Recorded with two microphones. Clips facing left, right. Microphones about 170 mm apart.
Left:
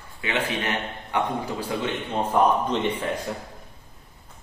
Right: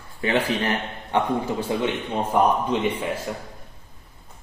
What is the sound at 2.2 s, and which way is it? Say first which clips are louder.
A man's voice: even; 10° right (ahead or behind).